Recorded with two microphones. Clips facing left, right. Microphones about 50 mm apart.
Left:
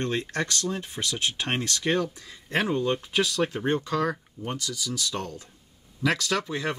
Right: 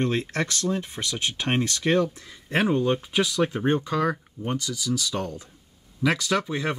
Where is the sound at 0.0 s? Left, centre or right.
Centre.